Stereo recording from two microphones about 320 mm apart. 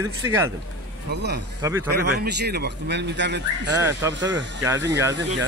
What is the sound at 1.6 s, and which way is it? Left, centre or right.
Speech, centre.